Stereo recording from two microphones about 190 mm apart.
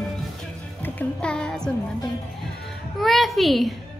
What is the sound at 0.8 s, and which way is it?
A woman's voice, 5° left (ahead or behind).